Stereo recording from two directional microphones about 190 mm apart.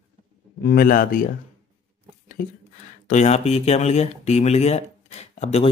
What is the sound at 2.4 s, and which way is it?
Speech, 45° left (ahead or behind).